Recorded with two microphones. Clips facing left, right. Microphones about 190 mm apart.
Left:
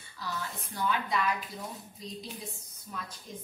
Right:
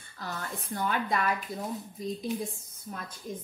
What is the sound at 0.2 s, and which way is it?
A woman's voice, 50° right (ahead or behind).